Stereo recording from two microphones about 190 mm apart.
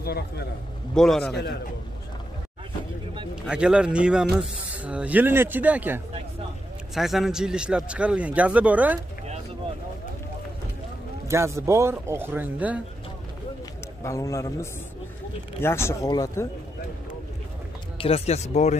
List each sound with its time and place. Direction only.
0.0 s a man's voice: 55° left (ahead or behind)
0.9 s a man's voice: 5° left (ahead or behind)
3.4 s a man's voice: 5° right (ahead or behind)
11.2 s speech: 15° right (ahead or behind)
14.0 s speech: 15° left (ahead or behind)
17.9 s speech: 30° left (ahead or behind)